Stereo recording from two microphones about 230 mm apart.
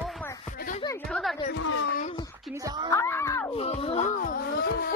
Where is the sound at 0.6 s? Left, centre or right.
Left.